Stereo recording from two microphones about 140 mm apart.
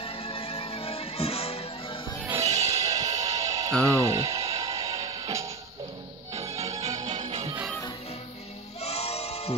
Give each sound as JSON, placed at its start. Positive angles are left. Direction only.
{"t": 0.0, "sound": "music", "side_deg": 40}
{"t": 2.5, "sound": "music", "side_deg": -25}
{"t": 6.9, "sound": "music", "side_deg": -30}
{"t": 7.2, "sound": "music", "side_deg": -50}
{"t": 8.8, "sound": "music", "side_deg": 50}